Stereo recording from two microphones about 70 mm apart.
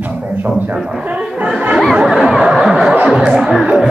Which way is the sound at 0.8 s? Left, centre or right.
Centre.